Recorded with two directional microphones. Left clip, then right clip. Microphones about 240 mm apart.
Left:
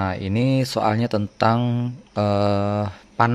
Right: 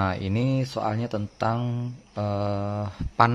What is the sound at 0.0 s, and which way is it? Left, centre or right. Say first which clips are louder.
Speech: left 3 dB; centre.